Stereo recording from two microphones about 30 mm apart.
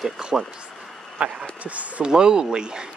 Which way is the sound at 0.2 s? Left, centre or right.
Right.